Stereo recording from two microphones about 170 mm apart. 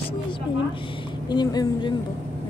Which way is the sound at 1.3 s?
25° left (ahead or behind).